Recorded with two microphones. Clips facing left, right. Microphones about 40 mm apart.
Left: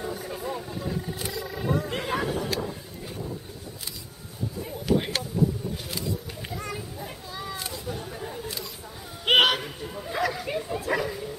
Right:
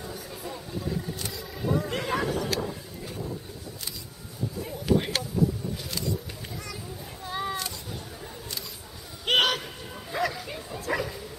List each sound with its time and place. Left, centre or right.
0.0 s vehicle: left
1.8 s vehicle: centre
4.6 s a sound: centre
7.2 s single-lens reflex camera: right
9.2 s a sound: centre
10.4 s bow-wow: left
10.9 s bow-wow: centre